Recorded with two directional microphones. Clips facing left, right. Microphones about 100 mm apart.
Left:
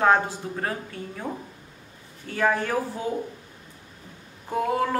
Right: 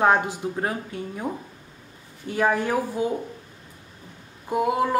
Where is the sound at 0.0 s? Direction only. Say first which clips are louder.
Right 1 dB; 20° right (ahead or behind).